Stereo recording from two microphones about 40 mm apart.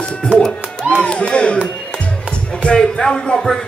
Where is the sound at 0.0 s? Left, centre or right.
Left.